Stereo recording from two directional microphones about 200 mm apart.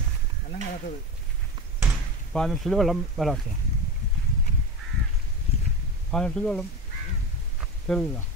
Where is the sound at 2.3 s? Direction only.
Centre (ahead or behind).